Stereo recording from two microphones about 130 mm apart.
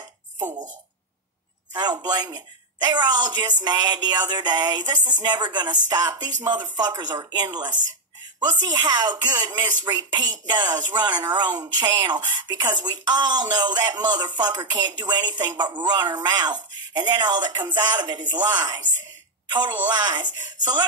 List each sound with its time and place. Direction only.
1.7 s speech: 30° right (ahead or behind)